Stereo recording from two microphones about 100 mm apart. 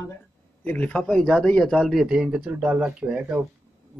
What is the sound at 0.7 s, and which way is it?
A man's voice, 15° left (ahead or behind).